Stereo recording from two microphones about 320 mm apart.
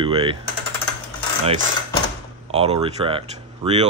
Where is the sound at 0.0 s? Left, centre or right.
Centre.